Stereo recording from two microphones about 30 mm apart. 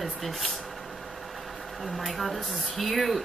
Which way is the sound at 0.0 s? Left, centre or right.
Centre.